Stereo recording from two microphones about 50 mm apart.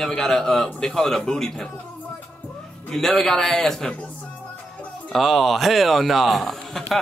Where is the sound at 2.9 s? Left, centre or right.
Centre.